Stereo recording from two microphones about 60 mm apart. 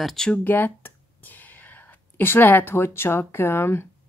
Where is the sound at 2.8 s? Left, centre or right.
Left.